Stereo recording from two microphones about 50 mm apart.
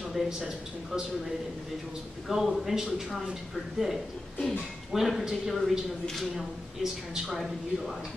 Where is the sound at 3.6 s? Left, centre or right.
Right.